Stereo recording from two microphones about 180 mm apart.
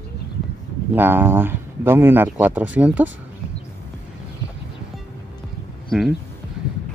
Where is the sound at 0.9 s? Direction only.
10° right (ahead or behind).